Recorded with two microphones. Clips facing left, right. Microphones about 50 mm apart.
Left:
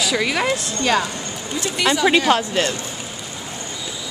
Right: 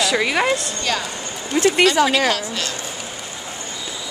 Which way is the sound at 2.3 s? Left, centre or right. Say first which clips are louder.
Left 5 dB; left.